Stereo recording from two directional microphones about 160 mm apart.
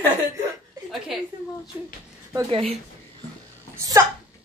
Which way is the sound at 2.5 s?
40° right (ahead or behind).